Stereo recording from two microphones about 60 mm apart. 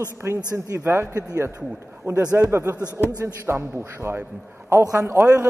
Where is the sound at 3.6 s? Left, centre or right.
Right.